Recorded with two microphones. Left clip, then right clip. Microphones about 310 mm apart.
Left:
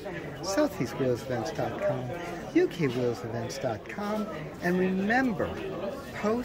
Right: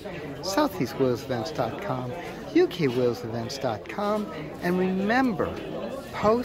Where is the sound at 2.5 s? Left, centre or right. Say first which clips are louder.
Right 4 dB; centre.